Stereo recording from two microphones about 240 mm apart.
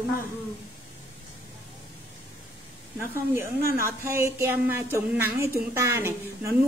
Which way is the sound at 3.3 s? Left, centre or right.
Centre.